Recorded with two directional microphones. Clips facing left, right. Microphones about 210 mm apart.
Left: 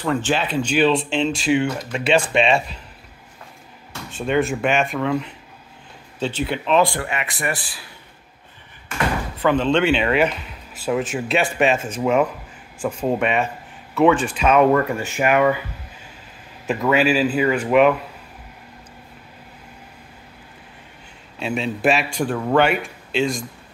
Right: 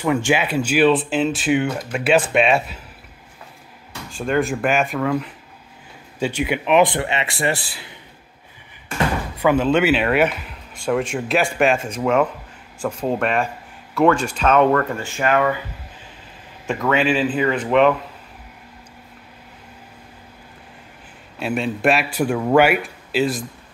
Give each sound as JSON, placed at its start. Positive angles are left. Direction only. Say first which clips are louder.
{"t": 0.0, "sound": "speech", "louder": "right 2 dB", "side_deg": -10}
{"t": 4.1, "sound": "speech", "louder": "even", "side_deg": 0}
{"t": 6.1, "sound": "speech", "louder": "right 2 dB", "side_deg": -10}
{"t": 9.4, "sound": "speech", "louder": "right 1 dB", "side_deg": -10}
{"t": 16.6, "sound": "speech", "louder": "left 1 dB", "side_deg": 5}
{"t": 21.4, "sound": "speech", "louder": "right 1 dB", "side_deg": 0}